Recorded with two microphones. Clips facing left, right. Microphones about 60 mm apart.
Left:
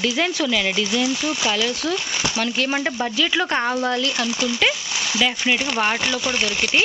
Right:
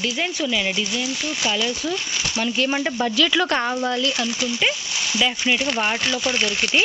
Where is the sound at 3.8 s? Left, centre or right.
Left.